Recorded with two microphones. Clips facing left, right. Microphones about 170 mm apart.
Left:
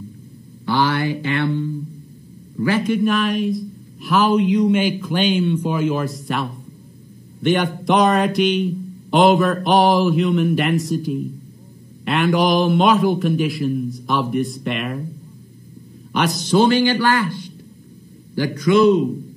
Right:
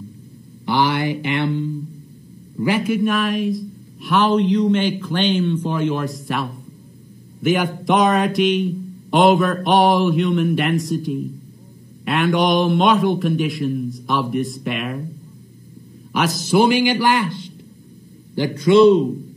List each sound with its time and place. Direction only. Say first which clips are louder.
0.7 s speech: even; 15° right (ahead or behind); by 15.0 s centre (ahead or behind)
16.1 s a man's voice: even; centre (ahead or behind)
16.5 s a man's voice: even; 10° right (ahead or behind); by 19.0 s 30° right (ahead or behind)